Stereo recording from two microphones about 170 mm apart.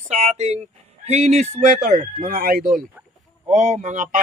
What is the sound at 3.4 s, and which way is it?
Speech, 40° right (ahead or behind).